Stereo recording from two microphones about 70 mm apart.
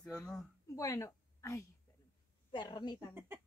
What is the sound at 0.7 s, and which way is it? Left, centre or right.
Speech, left.